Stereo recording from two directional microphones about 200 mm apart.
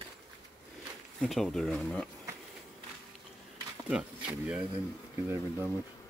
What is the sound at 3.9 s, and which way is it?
Speech, 5° right (ahead or behind).